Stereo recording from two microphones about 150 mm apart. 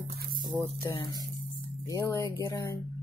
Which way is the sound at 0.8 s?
30° left (ahead or behind).